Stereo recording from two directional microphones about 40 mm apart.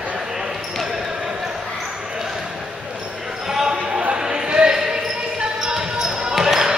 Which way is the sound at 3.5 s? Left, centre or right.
Centre.